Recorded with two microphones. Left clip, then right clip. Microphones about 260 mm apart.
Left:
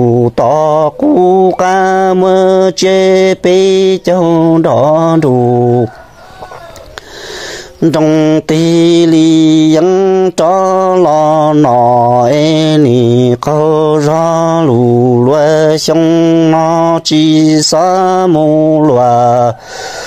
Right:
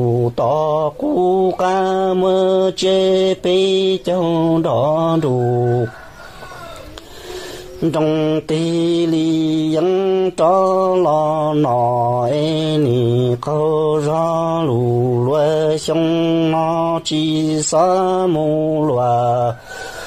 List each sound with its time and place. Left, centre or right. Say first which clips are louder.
0.0 s mantra: left 8 dB; left
7.8 s mantra: left 8 dB; left